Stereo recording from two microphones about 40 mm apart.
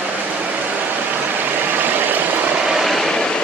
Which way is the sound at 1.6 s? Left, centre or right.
Right.